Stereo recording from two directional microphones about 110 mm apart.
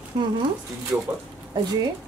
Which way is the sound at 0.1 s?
50° right (ahead or behind).